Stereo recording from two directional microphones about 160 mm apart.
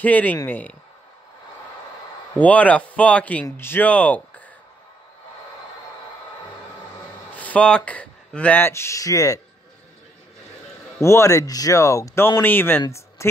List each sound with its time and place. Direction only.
0.0 s speech: 10° left (ahead or behind)
2.3 s speech: 10° left (ahead or behind)
7.2 s speech: 10° left (ahead or behind)
11.0 s speech: 15° left (ahead or behind)